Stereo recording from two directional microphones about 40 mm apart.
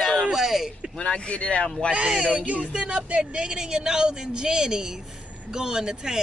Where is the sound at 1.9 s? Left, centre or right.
Right.